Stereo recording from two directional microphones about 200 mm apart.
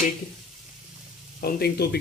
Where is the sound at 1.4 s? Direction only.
50° left (ahead or behind).